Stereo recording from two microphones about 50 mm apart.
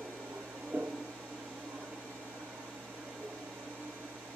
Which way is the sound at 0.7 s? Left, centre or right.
Right.